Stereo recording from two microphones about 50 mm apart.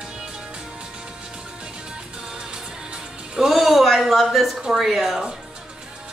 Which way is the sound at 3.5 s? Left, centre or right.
Centre.